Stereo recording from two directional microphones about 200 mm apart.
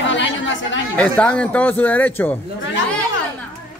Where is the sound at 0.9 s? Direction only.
5° left (ahead or behind).